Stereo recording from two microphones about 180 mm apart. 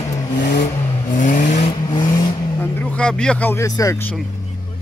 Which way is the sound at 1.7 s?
25° left (ahead or behind).